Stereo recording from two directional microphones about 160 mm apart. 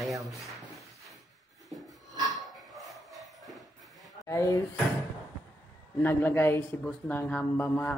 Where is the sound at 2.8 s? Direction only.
Centre (ahead or behind).